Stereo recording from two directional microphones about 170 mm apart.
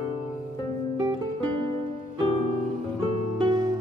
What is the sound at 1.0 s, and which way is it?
Music, 25° right (ahead or behind).